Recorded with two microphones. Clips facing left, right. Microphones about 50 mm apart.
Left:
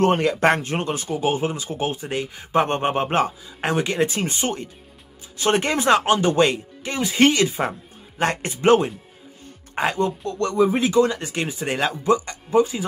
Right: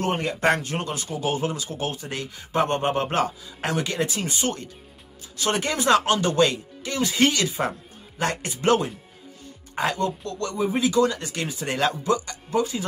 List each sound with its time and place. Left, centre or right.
0.4 s a man's voice: left
10.5 s speech: left
10.8 s speech: left